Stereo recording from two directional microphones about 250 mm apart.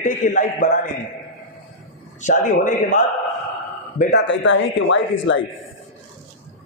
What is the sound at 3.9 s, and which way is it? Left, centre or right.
A man's voice, left.